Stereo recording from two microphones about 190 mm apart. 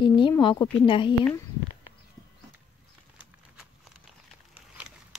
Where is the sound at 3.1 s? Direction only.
5° right (ahead or behind).